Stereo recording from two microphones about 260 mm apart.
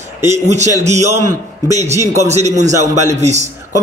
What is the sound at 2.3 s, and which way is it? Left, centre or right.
Speech, right.